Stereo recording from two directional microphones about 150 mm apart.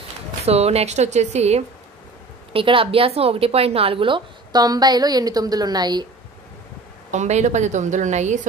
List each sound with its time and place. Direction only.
0.5 s a woman's voice: 45° right (ahead or behind)
2.5 s a woman's voice: 35° right (ahead or behind)
7.1 s a woman's voice: 50° right (ahead or behind)